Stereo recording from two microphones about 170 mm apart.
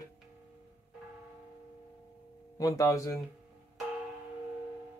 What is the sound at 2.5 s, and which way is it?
Speech, 20° left (ahead or behind).